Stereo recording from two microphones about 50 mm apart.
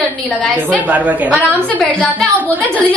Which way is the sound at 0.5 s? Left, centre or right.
Right.